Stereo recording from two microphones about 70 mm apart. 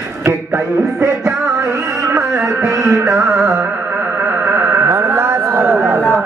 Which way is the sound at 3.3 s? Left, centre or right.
Right.